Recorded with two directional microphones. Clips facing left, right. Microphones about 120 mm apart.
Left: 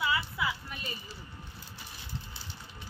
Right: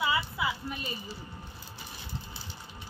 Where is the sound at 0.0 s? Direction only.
20° right (ahead or behind).